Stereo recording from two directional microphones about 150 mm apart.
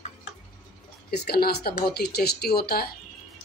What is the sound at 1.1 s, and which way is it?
Speech, 90° left.